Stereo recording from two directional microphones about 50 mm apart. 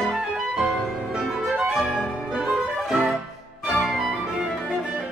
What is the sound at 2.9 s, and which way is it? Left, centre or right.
Music, right.